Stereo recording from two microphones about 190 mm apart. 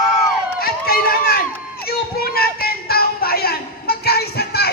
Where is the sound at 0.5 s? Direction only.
50° left (ahead or behind).